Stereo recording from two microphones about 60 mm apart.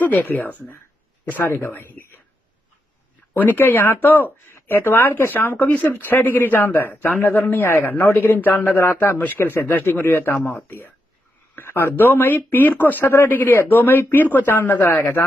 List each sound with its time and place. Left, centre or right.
0.0 s speech: left
1.3 s a man's voice: left
3.5 s speech: left
7.3 s a man's voice: left
11.5 s speech: left